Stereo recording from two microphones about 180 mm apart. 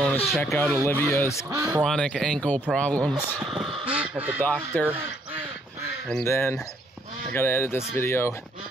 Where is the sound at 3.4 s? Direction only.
Centre (ahead or behind).